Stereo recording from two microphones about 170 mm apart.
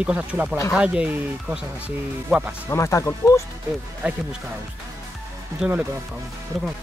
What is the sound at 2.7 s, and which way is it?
Speech, 15° left (ahead or behind).